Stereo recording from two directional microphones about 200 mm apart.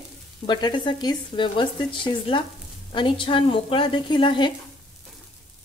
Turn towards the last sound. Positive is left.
turn(degrees=25)  # may be behind; listen again after turning